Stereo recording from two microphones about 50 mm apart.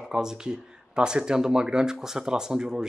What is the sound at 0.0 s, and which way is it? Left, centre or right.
A man's voice, centre.